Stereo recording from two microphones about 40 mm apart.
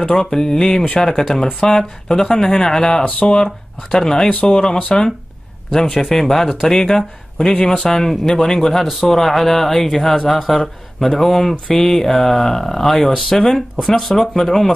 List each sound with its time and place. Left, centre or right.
0.1 s speech: centre
3.1 s speech: left
3.9 s speech: centre
5.9 s speech: centre; by 7.9 s left
7.9 s speech: centre